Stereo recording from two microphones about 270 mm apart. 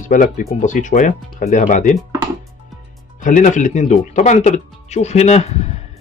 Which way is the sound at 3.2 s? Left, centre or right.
Left.